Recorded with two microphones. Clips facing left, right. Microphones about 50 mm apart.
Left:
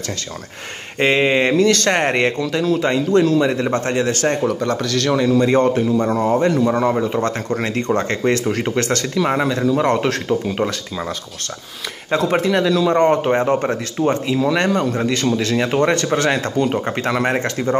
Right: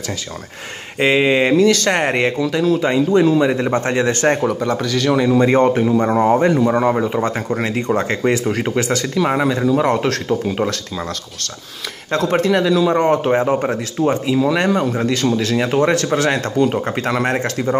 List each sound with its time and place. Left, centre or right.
0.9 s speech: centre; by 4.4 s right
4.5 s speech: centre
5.4 s a man's voice: right; by 11.1 s centre
12.1 s speech: centre